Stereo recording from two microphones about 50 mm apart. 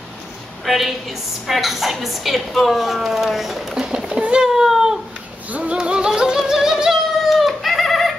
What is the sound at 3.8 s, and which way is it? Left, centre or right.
Cat, centre.